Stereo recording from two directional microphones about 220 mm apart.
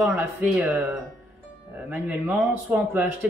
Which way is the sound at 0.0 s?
5° right (ahead or behind).